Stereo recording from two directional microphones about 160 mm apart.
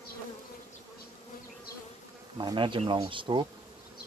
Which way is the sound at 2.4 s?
30° right (ahead or behind).